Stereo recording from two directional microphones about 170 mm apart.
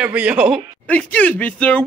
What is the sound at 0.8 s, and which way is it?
Speech, 10° left (ahead or behind).